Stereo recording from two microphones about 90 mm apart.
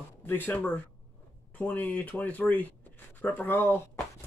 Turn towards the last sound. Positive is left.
turn(degrees=25)  # may be behind; listen again after turning